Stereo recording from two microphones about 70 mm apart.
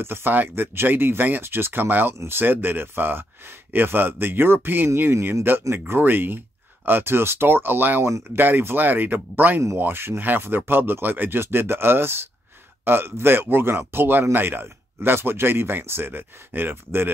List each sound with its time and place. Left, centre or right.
0.0 s speech: right